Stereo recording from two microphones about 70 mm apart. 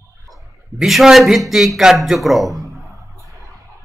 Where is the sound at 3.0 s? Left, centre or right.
Right.